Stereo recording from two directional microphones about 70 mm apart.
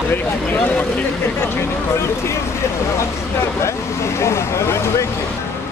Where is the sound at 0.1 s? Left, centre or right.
Left.